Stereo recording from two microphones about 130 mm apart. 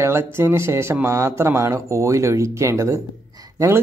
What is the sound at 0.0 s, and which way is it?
Speech, 20° right (ahead or behind).